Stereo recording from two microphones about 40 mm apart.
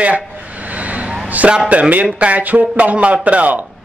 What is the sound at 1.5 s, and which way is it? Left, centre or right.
Speech, right.